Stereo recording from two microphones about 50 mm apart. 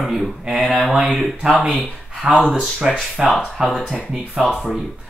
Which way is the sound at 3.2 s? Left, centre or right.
Centre.